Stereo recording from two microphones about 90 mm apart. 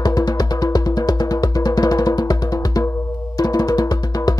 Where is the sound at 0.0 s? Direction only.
45° left (ahead or behind).